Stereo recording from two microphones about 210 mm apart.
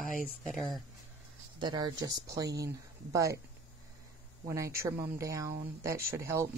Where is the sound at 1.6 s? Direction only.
20° right (ahead or behind).